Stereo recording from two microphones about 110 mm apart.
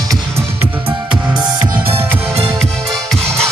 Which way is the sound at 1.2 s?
10° right (ahead or behind).